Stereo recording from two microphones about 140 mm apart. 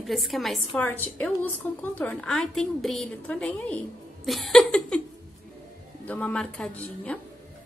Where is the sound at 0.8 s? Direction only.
10° left (ahead or behind).